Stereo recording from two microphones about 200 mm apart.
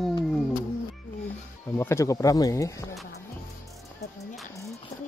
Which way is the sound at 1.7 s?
15° left (ahead or behind).